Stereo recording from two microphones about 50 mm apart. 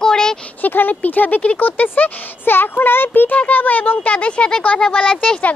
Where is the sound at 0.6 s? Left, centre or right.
Left; by 5.4 s centre.